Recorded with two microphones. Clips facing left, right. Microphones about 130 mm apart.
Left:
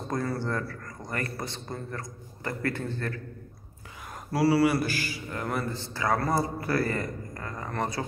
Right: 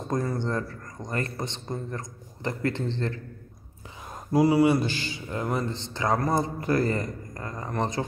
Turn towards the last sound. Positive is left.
turn(degrees=-20)  # may be behind; listen again after turning